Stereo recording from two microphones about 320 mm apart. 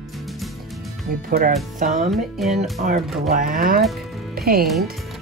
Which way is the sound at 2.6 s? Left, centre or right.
Right.